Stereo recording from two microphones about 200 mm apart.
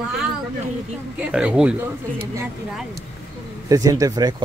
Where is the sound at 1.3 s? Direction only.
5° right (ahead or behind).